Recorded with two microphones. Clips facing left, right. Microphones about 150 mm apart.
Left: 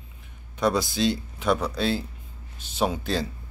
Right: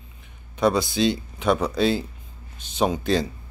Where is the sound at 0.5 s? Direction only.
Centre (ahead or behind).